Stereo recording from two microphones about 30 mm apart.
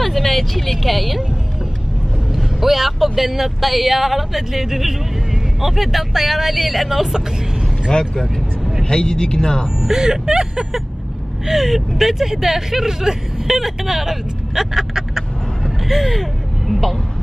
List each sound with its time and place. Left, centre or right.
0.2 s speech: centre
2.3 s speech: centre
8.8 s speech: left
9.8 s speech: right
11.4 s speech: centre
15.6 s vehicle: centre